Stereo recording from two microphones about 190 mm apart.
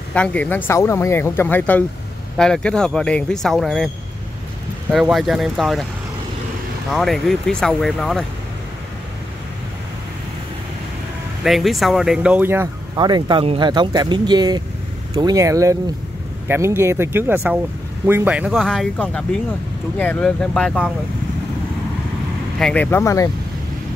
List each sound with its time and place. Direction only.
0.1 s speech: 5° left (ahead or behind)
4.9 s speech: centre (ahead or behind)
6.9 s speech: centre (ahead or behind)
11.4 s speech: centre (ahead or behind)
22.6 s speech: 5° left (ahead or behind)